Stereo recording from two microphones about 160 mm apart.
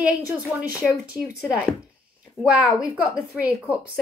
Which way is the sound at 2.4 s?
35° left (ahead or behind).